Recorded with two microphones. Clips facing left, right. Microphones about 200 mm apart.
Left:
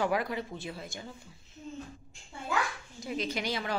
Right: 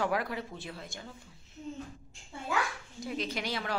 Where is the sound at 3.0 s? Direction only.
Centre (ahead or behind).